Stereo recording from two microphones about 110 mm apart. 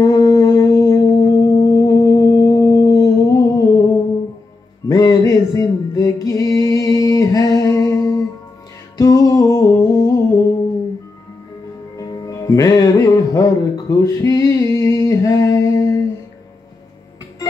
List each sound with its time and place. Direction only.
0.0 s music: 35° left (ahead or behind)
12.0 s music: 35° left (ahead or behind)